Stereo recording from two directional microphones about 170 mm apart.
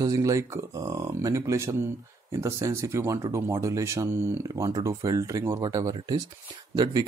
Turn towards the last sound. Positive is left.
turn(degrees=-20)  # may be behind; listen again after turning